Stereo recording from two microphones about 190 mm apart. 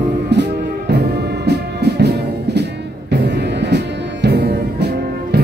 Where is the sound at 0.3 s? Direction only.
65° right (ahead or behind).